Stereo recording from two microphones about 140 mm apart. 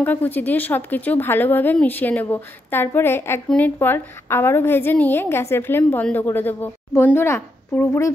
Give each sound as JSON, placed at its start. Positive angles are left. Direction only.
{"t": 0.0, "sound": "a woman's voice", "side_deg": 15}